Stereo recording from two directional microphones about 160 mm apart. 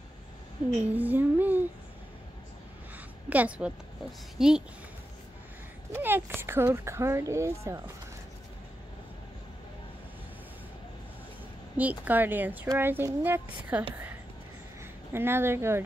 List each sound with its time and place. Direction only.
0.6 s a woman's voice: 25° left (ahead or behind)
0.9 s a sound: 10° right (ahead or behind)
3.3 s speech: 10° right (ahead or behind)
5.9 s speech: 15° right (ahead or behind)
12.0 s speech: 10° right (ahead or behind)
15.1 s speech: 15° right (ahead or behind)